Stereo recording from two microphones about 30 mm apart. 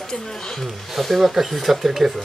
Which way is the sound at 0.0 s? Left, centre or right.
Centre.